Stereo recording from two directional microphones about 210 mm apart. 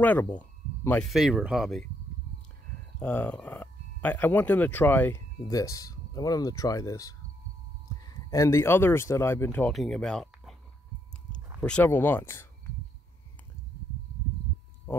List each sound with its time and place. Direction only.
0.0 s speech: 5° left (ahead or behind)
3.0 s speech: 5° left (ahead or behind)
11.6 s speech: 5° left (ahead or behind)